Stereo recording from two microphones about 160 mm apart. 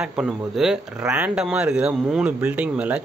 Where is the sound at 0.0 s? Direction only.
5° right (ahead or behind).